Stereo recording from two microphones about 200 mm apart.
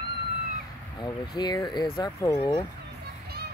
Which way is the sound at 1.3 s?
20° left (ahead or behind).